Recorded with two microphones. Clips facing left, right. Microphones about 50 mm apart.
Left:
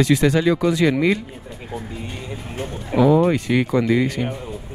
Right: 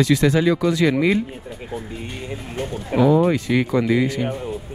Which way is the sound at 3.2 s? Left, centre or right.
Centre.